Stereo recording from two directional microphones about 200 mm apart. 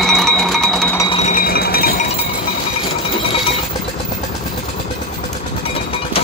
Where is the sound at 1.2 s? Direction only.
40° left (ahead or behind).